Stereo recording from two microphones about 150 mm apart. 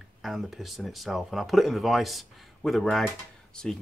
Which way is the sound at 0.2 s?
Centre (ahead or behind).